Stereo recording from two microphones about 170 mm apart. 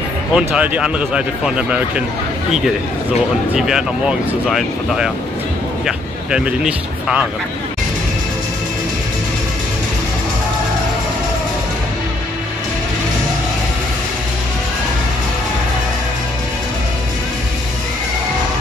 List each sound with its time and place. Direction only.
0.3 s speech: 5° right (ahead or behind)
3.5 s speech: 5° right (ahead or behind)